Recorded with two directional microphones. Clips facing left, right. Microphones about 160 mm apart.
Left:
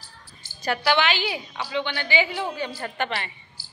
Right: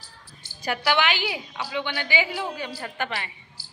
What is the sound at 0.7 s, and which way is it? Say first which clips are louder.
A woman's voice: left 1 dB; 15° right (ahead or behind).